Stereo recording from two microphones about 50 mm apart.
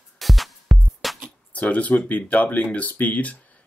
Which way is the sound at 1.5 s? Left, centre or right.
Left.